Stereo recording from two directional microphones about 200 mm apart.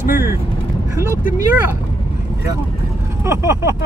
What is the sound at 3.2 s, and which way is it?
Speech, 15° right (ahead or behind).